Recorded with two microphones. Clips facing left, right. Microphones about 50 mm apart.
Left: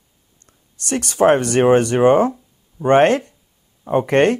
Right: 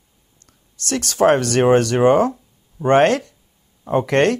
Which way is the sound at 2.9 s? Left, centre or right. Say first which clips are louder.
Left 1 dB; left.